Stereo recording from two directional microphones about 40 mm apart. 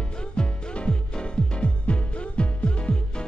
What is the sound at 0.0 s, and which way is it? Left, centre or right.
Music, left.